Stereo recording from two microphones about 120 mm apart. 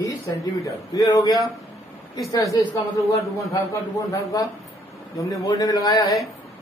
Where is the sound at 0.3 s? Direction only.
30° left (ahead or behind).